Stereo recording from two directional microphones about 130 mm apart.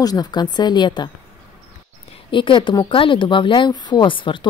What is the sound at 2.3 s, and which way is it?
A woman's voice, 40° left (ahead or behind).